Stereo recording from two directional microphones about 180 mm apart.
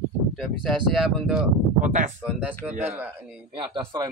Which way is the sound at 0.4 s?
Centre (ahead or behind).